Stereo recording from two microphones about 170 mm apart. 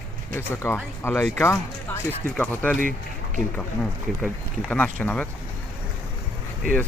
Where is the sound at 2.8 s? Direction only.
50° right (ahead or behind).